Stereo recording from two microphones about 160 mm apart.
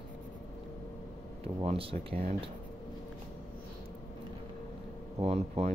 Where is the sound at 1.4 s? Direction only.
35° right (ahead or behind).